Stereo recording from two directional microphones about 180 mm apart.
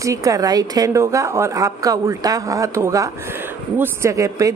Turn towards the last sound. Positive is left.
turn(degrees=-15)  # may be behind; listen again after turning